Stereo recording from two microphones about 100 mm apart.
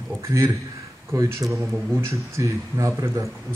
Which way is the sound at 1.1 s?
30° right (ahead or behind).